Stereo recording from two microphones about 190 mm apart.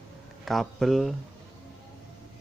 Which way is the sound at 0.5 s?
Centre (ahead or behind).